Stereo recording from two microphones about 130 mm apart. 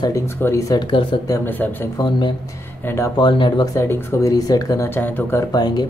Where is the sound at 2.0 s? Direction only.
35° left (ahead or behind).